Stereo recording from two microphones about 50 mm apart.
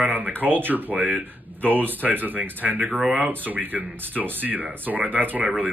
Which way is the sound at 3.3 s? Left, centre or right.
Right.